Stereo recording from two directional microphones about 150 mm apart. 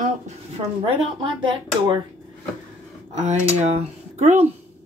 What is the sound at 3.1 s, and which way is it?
Speech, 50° right (ahead or behind).